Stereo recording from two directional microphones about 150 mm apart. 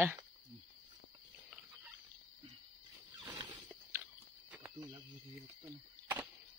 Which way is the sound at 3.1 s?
25° right (ahead or behind).